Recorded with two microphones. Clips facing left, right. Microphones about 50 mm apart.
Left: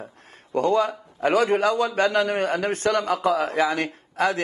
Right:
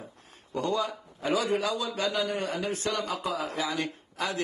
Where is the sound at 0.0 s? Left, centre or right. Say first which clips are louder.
Left 6 dB; left.